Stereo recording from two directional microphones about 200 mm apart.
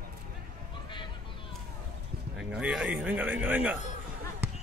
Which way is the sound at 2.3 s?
5° right (ahead or behind).